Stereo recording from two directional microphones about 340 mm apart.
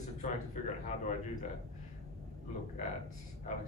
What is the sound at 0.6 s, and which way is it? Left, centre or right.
Speech, left.